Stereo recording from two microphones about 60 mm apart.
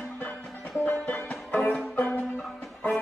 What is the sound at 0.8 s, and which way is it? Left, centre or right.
Music, left.